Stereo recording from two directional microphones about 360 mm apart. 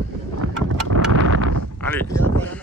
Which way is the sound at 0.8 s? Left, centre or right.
Right.